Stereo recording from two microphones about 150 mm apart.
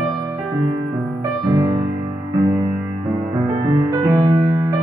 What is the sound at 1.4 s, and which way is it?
Music, 25° right (ahead or behind).